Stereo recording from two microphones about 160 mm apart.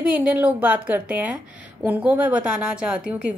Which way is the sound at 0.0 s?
10° right (ahead or behind).